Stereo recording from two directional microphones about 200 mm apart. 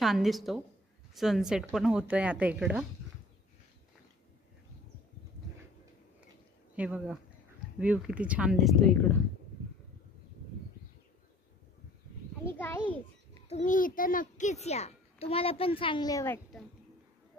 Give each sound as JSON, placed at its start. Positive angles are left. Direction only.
{"t": 0.0, "sound": "a woman's voice", "side_deg": 0}
{"t": 6.7, "sound": "a woman's voice", "side_deg": -5}
{"t": 12.5, "sound": "a child's voice", "side_deg": 10}
{"t": 13.5, "sound": "a child's voice", "side_deg": 40}